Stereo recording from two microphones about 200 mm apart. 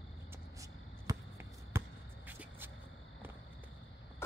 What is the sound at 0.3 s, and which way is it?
Basketball bounce, 15° right (ahead or behind).